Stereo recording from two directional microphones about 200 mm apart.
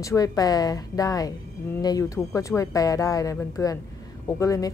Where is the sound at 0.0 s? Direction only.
15° left (ahead or behind).